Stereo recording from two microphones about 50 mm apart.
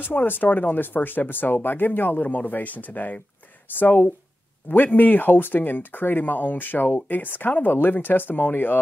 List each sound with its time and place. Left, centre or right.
0.0 s speech: left